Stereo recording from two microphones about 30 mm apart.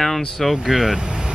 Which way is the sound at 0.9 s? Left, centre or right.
Right.